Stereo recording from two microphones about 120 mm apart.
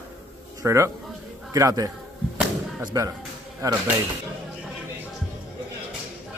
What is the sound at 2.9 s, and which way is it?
Speech, 30° right (ahead or behind).